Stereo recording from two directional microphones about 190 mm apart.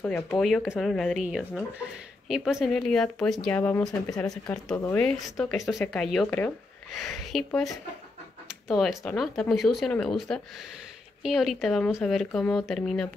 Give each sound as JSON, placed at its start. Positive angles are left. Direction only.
{"t": 0.0, "sound": "speech", "side_deg": 5}
{"t": 4.3, "sound": "speech", "side_deg": 0}